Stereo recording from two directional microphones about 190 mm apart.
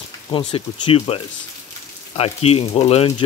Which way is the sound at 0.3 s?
25° left (ahead or behind).